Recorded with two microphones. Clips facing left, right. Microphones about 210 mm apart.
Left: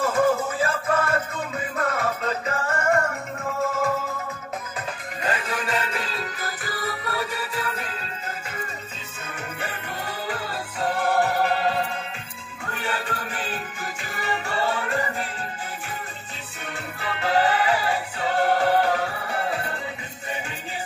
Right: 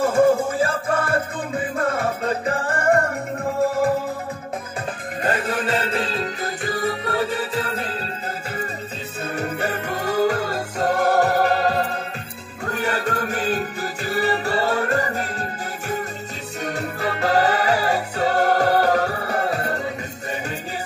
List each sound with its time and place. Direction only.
0.0 s music: 30° right (ahead or behind)
5.2 s music: 55° right (ahead or behind)
5.5 s music: 35° right (ahead or behind)
9.3 s music: 40° right (ahead or behind)
16.6 s music: 40° right (ahead or behind)